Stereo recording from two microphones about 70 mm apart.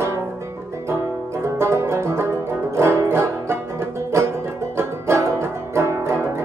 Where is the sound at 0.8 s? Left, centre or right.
Right.